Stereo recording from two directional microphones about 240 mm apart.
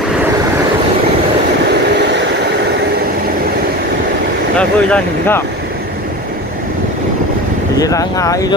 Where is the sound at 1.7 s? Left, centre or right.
Right.